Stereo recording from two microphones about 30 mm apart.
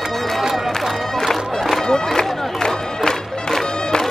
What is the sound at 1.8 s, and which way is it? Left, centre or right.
Music, left.